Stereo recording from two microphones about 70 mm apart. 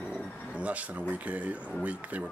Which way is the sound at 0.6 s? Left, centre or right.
Right.